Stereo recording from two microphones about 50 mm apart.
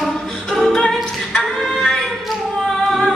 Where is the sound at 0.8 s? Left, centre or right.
Centre.